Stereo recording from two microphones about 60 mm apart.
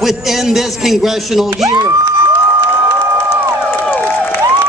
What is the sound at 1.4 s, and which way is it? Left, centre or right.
Speech, right.